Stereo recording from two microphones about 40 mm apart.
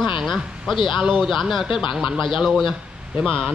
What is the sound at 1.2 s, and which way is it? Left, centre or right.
Speech, centre.